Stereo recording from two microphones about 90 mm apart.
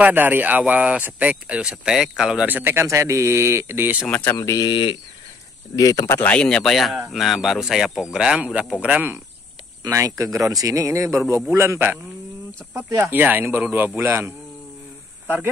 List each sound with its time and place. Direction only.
0.0 s speech: 20° right (ahead or behind)
4.3 s speech: 35° left (ahead or behind)
4.6 s speech: 60° left (ahead or behind)
5.8 s speech: 40° left (ahead or behind)
6.2 s speech: 10° left (ahead or behind); by 8.7 s 5° right (ahead or behind)
8.8 s speech: 20° right (ahead or behind)
9.8 s speech: 35° right (ahead or behind)